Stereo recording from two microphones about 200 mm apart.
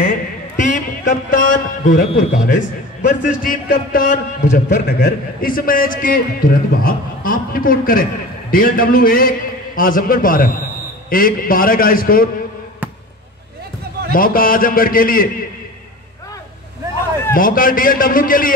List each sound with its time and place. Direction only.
0.0 s a man's voice: 40° left (ahead or behind)
4.8 s a man's voice: 50° left (ahead or behind)
14.1 s a man's voice: 45° left (ahead or behind)
17.3 s a man's voice: 45° left (ahead or behind)